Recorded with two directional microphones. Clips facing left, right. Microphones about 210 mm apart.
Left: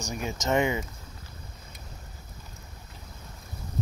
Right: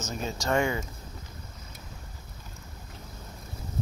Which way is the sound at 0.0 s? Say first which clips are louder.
Left 1 dB; 15° left (ahead or behind).